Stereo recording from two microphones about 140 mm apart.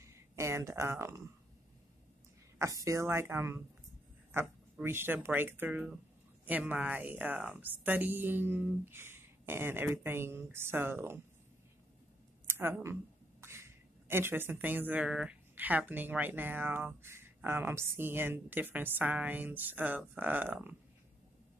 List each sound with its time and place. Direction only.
0.0 s speech: 20° right (ahead or behind)
2.6 s speech: 20° right (ahead or behind)
12.4 s speech: 15° right (ahead or behind)